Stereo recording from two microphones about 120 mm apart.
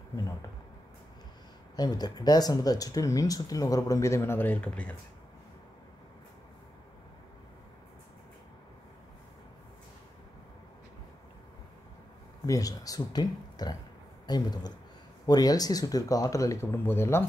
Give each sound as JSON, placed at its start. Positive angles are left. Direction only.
{"t": 0.1, "sound": "speech", "side_deg": 30}
{"t": 1.8, "sound": "speech", "side_deg": 35}
{"t": 12.4, "sound": "speech", "side_deg": 30}